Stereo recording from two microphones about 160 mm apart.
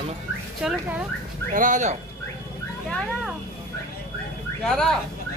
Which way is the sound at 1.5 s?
50° right (ahead or behind).